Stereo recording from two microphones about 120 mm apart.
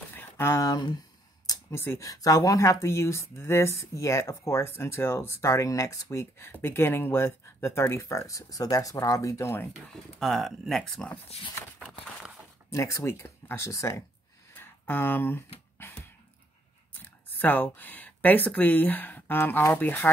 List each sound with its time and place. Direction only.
0.1 s speech: 20° left (ahead or behind)
10.1 s speech: centre (ahead or behind)
12.6 s speech: 25° left (ahead or behind)
14.5 s a sound: 15° left (ahead or behind)
17.0 s speech: 15° left (ahead or behind)